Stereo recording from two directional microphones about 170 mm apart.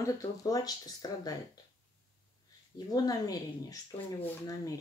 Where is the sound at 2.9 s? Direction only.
20° left (ahead or behind).